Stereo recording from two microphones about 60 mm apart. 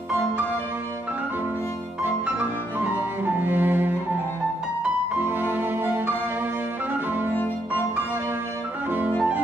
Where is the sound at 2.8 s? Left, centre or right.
Right.